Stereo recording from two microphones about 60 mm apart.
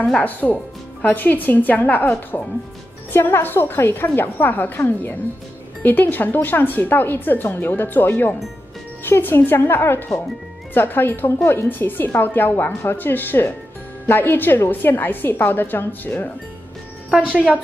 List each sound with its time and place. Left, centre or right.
0.2 s a woman's voice: left
17.1 s a woman's voice: right